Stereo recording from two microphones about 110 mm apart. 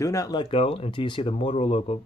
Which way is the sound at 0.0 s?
30° left (ahead or behind).